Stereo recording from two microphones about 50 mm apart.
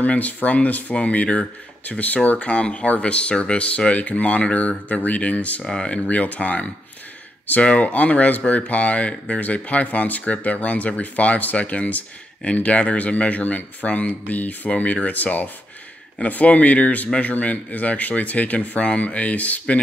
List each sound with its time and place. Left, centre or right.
0.0 s speech: left
5.6 s speech: centre
5.9 s speech: left